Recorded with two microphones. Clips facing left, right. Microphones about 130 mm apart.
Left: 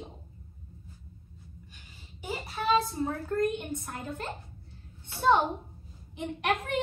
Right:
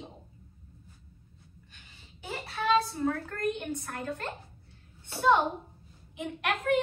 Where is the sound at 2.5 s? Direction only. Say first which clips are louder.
Even; 20° left (ahead or behind).